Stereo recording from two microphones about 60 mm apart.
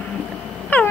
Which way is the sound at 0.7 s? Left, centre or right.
Left.